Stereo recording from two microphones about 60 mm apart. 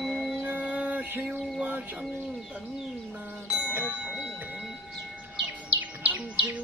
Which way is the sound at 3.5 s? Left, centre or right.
Centre.